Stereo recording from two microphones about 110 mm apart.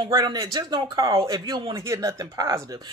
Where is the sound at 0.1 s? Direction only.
40° right (ahead or behind).